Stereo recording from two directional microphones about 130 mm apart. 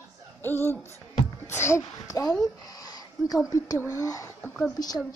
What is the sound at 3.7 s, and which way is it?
A woman's voice, 20° left (ahead or behind).